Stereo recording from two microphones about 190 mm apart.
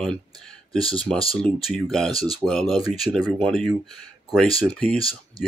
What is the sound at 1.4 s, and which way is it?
Speech, centre (ahead or behind).